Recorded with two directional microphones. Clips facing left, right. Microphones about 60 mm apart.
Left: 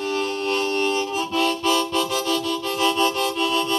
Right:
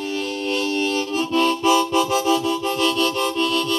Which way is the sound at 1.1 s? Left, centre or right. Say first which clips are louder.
Right 3 dB; centre.